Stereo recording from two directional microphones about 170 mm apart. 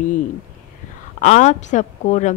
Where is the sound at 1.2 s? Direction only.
45° left (ahead or behind).